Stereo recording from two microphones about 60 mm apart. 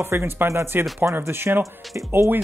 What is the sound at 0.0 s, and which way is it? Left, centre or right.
Speech, right.